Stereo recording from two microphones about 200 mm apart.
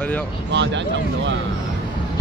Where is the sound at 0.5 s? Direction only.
65° right (ahead or behind).